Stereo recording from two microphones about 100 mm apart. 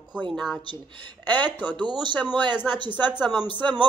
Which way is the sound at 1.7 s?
50° right (ahead or behind).